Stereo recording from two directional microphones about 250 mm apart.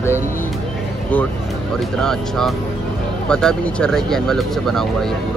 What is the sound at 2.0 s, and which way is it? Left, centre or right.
Speech, centre.